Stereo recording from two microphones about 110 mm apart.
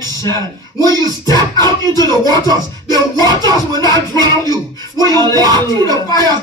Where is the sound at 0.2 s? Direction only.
30° left (ahead or behind).